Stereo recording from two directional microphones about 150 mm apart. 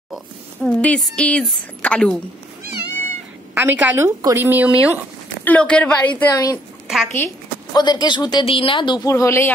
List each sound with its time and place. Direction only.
0.7 s a woman's voice: 5° left (ahead or behind)
2.7 s cat: 90° right
3.5 s speech: 10° right (ahead or behind)
5.4 s a woman's voice: 10° left (ahead or behind)
6.3 s a woman's voice: 25° left (ahead or behind)
7.7 s speech: 25° left (ahead or behind)
9.1 s a woman's voice: 20° left (ahead or behind)